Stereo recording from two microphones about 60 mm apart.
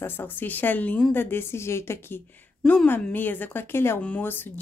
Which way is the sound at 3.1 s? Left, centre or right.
Left.